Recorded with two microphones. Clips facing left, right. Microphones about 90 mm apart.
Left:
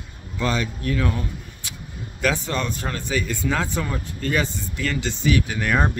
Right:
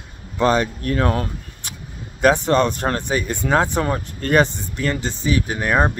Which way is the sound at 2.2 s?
55° right (ahead or behind).